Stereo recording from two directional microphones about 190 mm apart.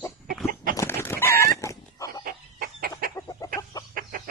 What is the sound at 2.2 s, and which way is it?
Chicken, 50° right (ahead or behind).